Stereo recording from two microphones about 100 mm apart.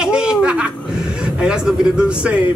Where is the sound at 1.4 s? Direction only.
10° right (ahead or behind).